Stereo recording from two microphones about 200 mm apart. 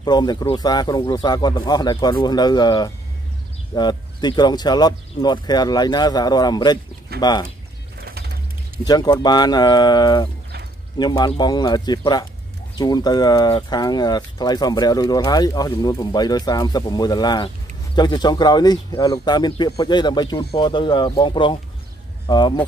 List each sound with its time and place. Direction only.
0.0 s speech: 20° left (ahead or behind)
8.0 s a sound: 50° right (ahead or behind)
8.8 s speech: 20° left (ahead or behind)